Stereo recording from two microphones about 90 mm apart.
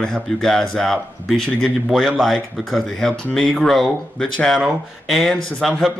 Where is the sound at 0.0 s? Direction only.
5° left (ahead or behind).